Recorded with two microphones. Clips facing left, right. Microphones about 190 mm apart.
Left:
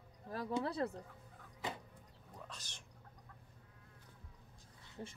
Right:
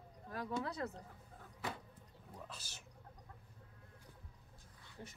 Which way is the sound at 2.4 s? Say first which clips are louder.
Even; 5° right (ahead or behind).